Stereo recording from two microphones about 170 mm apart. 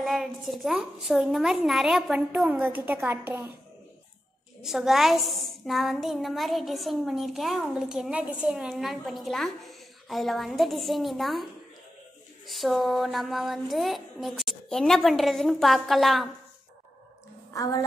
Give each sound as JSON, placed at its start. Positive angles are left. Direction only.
{"t": 0.0, "sound": "a woman's voice", "side_deg": 0}
{"t": 4.6, "sound": "a woman's voice", "side_deg": 0}
{"t": 12.4, "sound": "a woman's voice", "side_deg": 0}
{"t": 17.5, "sound": "a woman's voice", "side_deg": 20}